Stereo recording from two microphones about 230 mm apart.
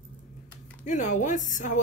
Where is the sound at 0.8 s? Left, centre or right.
Left.